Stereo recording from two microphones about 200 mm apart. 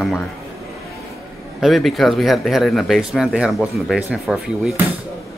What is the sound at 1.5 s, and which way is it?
Speech, centre (ahead or behind).